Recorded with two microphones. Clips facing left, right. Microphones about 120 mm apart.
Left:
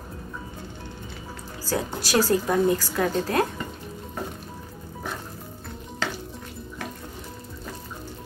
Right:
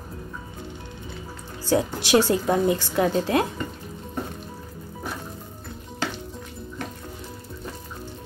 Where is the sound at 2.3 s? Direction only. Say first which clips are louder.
Even; 20° right (ahead or behind).